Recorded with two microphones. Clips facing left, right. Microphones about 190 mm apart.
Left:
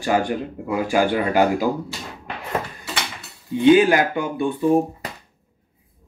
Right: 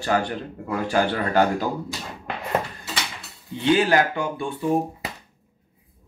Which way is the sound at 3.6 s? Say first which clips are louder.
Left 5 dB; 15° left (ahead or behind).